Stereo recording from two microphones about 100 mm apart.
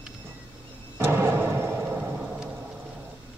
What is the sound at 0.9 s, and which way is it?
Music, 20° right (ahead or behind).